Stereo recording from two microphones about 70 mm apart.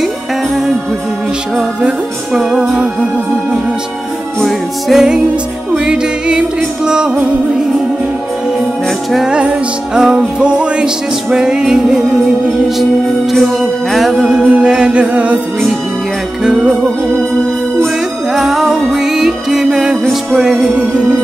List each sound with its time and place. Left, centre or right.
1.8 s music: centre
4.4 s music: centre
9.1 s music: centre
13.3 s music: centre
14.2 s music: centre
16.4 s music: centre
18.3 s music: centre